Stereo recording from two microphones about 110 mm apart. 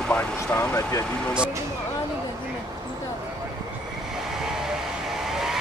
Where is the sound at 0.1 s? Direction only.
10° left (ahead or behind).